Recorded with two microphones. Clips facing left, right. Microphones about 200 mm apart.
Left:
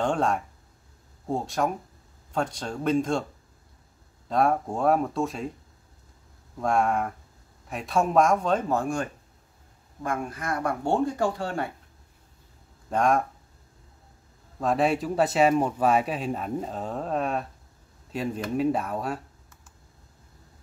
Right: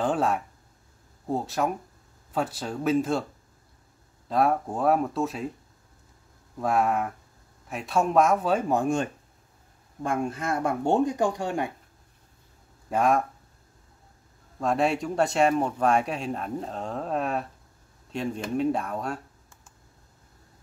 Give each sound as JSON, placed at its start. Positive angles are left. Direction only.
{"t": 0.0, "sound": "speech", "side_deg": -5}
{"t": 4.3, "sound": "speech", "side_deg": 0}
{"t": 6.6, "sound": "speech", "side_deg": 0}
{"t": 12.9, "sound": "speech", "side_deg": -5}
{"t": 14.6, "sound": "speech", "side_deg": 0}